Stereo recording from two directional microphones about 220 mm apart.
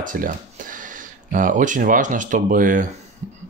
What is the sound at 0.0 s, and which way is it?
Speech, 35° right (ahead or behind).